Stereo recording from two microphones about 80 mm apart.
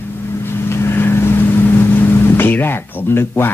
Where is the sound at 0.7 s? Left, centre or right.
Left.